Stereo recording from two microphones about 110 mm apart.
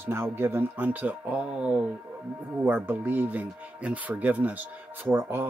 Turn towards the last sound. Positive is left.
turn(degrees=-20)  # may be behind; listen again after turning